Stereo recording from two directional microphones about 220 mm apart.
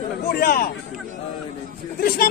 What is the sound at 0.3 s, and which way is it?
Speech, 40° left (ahead or behind).